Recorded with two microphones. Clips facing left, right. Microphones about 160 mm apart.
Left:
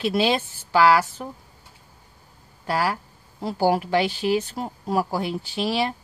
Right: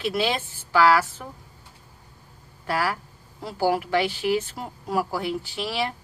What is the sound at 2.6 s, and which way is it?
A woman's voice, 25° left (ahead or behind).